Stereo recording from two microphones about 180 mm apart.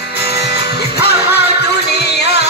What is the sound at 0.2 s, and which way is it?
Music, 65° left (ahead or behind).